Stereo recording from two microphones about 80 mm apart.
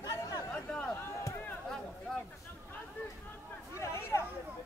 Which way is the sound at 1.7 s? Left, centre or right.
Centre.